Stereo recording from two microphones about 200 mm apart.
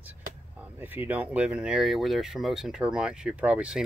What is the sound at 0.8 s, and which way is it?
Speech, 10° right (ahead or behind).